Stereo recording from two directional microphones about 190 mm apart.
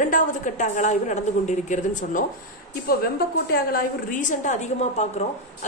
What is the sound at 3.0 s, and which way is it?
A woman's voice, 55° left (ahead or behind).